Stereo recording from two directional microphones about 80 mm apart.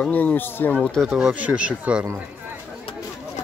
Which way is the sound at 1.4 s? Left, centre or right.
Centre.